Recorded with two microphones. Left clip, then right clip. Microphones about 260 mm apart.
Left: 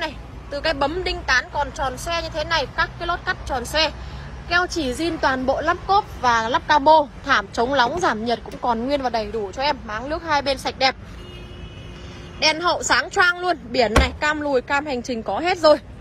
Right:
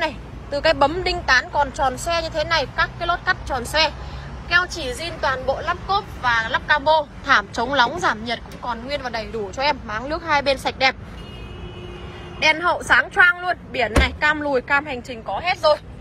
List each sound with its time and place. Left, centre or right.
0.0 s a woman's voice: centre
12.4 s a woman's voice: centre